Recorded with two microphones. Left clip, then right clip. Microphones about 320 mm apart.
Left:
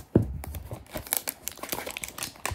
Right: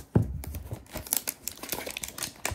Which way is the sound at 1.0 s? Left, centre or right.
Centre.